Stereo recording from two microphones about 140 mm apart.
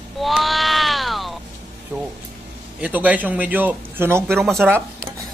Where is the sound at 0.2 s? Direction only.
Centre (ahead or behind).